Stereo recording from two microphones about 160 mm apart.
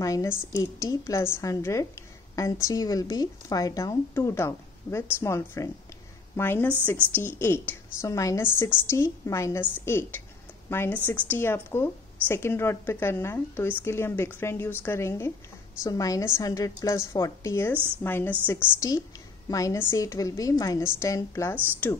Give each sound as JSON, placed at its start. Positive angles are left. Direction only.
{"t": 0.0, "sound": "a woman's voice", "side_deg": 20}
{"t": 17.7, "sound": "a woman's voice", "side_deg": -15}
{"t": 18.0, "sound": "a woman's voice", "side_deg": 15}